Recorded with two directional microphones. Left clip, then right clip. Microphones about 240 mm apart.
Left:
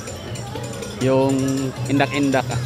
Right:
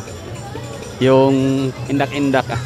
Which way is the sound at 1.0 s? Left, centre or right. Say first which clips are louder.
Right 6 dB; centre.